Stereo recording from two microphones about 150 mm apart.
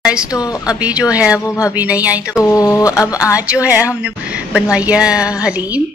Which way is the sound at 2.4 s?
20° left (ahead or behind).